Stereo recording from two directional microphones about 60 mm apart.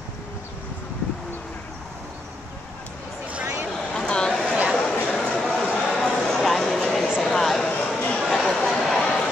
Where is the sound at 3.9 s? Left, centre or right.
Centre.